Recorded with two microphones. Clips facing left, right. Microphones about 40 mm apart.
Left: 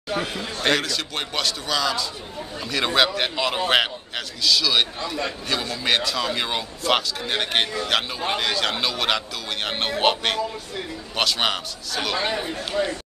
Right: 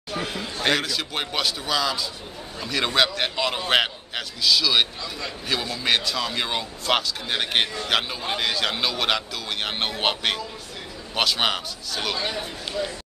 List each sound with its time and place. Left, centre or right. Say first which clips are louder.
0.2 s a man's voice: right 3 dB; centre
12.7 s speech: left 4 dB; left